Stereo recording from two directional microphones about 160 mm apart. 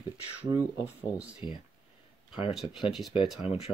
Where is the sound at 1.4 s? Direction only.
35° left (ahead or behind).